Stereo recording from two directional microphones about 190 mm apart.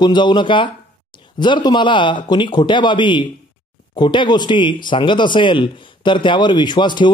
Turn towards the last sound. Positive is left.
turn(degrees=25)  # may be behind; listen again after turning